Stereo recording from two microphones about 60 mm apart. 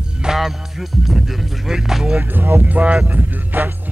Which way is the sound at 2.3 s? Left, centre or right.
Right.